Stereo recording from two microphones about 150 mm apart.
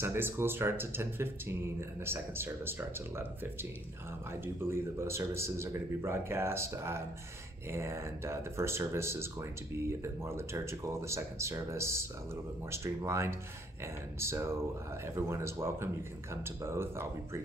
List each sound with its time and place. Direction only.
0.0 s speech: 15° right (ahead or behind)
5.0 s speech: 15° right (ahead or behind)